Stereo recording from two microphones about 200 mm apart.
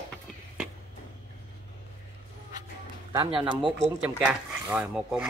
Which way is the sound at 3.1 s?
20° right (ahead or behind).